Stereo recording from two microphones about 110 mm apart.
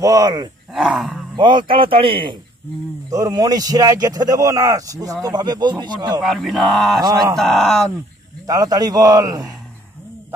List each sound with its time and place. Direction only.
0.0 s a man's voice: 35° right (ahead or behind)
0.7 s speech: 5° right (ahead or behind)
1.3 s speech: 45° right (ahead or behind)
3.1 s a man's voice: 35° right (ahead or behind)
6.2 s speech: centre (ahead or behind)
7.0 s a man's voice: 35° right (ahead or behind)
7.3 s speech: 5° left (ahead or behind)
8.5 s a man's voice: 35° right (ahead or behind)